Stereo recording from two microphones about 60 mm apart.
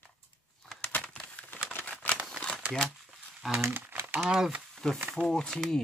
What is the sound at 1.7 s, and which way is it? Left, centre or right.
Camera, left.